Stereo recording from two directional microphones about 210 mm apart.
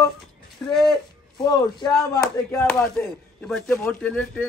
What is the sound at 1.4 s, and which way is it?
Speech, 20° left (ahead or behind).